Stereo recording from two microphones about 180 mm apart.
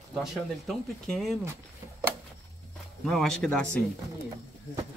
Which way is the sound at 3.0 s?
Centre (ahead or behind).